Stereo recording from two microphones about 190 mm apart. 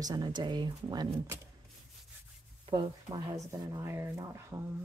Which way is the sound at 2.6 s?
25° right (ahead or behind).